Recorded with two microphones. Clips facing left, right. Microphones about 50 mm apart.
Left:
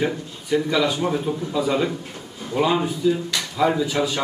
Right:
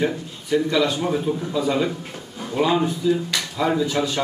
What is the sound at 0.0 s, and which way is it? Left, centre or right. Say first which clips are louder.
Speech: right 1 dB; centre.